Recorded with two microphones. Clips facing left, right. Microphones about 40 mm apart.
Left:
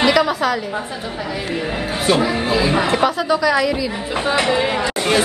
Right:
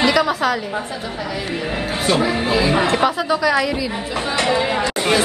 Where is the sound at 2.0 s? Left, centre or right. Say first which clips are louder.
Left 1 dB; centre.